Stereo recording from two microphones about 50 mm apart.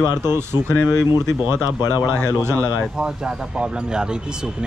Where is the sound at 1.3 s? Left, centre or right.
Right.